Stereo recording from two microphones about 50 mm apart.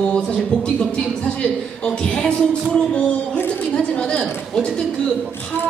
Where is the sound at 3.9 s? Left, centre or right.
Left.